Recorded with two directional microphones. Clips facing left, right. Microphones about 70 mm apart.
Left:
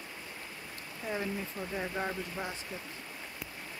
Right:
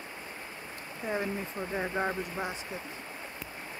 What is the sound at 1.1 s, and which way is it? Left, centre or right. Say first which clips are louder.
Speech: right 3 dB; right.